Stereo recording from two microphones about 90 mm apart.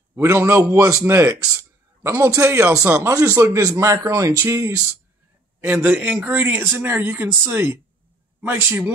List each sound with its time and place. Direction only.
0.1 s speech: 25° right (ahead or behind)
5.6 s a man's voice: 20° right (ahead or behind)